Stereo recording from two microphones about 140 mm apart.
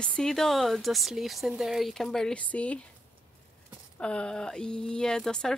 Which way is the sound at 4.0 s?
5° left (ahead or behind).